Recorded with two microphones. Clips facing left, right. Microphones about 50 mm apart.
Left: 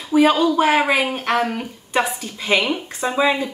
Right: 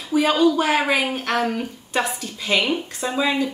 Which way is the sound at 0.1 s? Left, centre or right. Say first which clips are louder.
Left 2 dB; centre.